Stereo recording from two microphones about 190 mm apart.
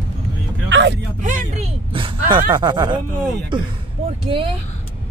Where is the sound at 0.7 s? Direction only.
70° right (ahead or behind).